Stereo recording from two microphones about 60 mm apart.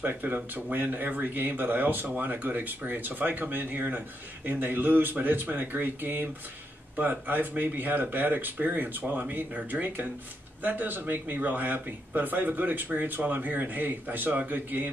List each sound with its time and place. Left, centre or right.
0.0 s speech: right